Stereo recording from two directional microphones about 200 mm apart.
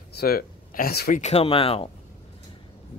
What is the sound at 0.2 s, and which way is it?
Speech, 50° left (ahead or behind).